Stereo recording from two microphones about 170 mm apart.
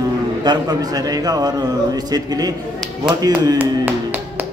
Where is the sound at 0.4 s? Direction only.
25° right (ahead or behind).